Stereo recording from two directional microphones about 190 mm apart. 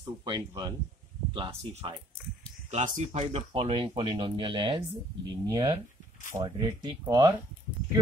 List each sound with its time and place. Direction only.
0.2 s speech: 20° right (ahead or behind)